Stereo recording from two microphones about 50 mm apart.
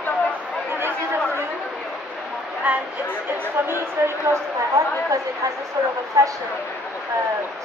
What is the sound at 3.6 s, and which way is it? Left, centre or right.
Chatter, right.